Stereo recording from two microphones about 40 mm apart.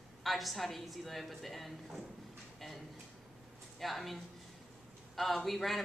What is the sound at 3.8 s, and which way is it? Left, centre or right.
Speech, centre.